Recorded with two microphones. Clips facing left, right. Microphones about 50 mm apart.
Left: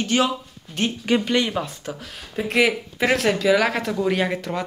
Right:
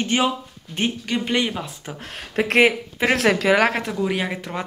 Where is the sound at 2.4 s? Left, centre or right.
Right.